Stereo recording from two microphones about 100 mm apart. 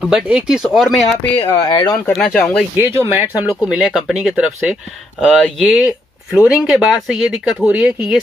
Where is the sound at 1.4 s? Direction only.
65° left (ahead or behind).